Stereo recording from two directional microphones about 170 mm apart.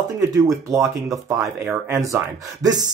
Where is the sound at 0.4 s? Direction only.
20° right (ahead or behind).